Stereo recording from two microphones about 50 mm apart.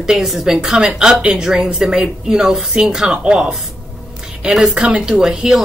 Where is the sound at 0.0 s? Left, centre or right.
Centre.